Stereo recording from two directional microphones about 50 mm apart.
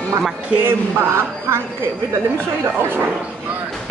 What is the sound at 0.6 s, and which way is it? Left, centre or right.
Speech, right.